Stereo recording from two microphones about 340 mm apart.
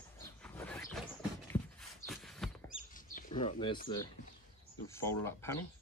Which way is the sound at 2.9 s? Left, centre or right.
Left.